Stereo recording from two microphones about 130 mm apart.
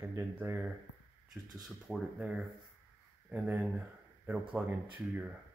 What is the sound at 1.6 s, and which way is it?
Speech, centre (ahead or behind).